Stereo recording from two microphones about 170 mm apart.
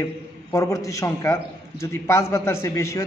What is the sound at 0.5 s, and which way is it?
A man's voice, 20° left (ahead or behind).